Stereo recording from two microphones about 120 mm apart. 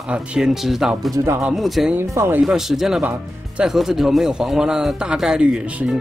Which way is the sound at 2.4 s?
5° right (ahead or behind).